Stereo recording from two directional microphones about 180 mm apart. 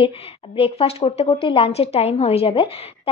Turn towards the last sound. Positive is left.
turn(degrees=30)  # may be behind; listen again after turning